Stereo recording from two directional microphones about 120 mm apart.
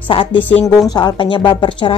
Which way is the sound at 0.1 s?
45° left (ahead or behind).